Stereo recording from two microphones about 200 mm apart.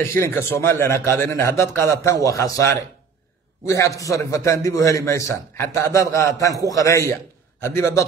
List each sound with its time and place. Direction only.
0.1 s a man's voice: 10° left (ahead or behind)